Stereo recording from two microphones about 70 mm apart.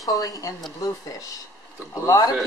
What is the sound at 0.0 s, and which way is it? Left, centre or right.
Speech, left.